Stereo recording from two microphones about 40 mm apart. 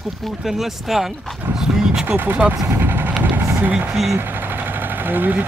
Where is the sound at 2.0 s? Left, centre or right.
Right.